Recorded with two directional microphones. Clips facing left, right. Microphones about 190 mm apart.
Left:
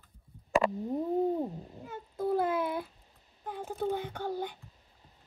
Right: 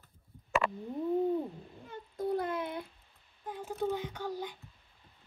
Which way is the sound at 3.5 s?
55° left (ahead or behind).